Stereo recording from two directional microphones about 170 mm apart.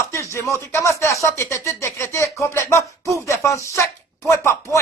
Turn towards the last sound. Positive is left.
turn(degrees=15)  # may be behind; listen again after turning